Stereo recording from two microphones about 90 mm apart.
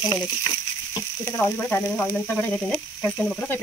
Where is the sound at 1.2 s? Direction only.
25° left (ahead or behind).